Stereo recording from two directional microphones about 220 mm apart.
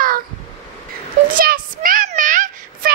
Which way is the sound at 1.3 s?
40° right (ahead or behind).